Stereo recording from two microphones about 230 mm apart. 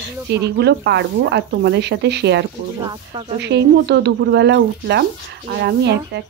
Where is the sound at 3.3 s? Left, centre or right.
Right.